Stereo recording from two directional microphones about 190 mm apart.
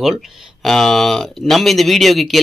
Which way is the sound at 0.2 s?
Centre (ahead or behind).